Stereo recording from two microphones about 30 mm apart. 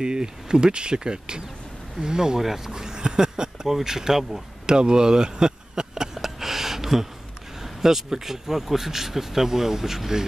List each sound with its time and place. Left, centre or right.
0.0 s speech: right
3.6 s speech: centre
4.6 s speech: right
6.1 s a sound: centre
8.2 s speech: centre